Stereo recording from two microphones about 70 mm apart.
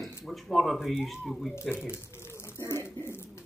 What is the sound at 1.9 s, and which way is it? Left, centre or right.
Speech, left.